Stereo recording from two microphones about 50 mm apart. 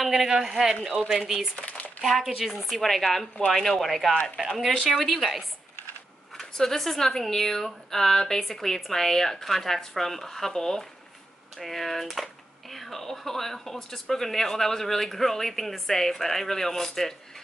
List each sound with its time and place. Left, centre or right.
0.0 s a woman's voice: centre
1.7 s a sound: left
2.0 s a woman's voice: centre
6.3 s speech: centre